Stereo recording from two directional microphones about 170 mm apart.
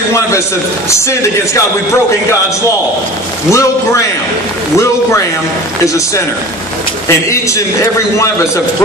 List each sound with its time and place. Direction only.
0.8 s a man's voice: 15° left (ahead or behind)
3.4 s a man's voice: 15° left (ahead or behind)
7.1 s a man's voice: 15° left (ahead or behind)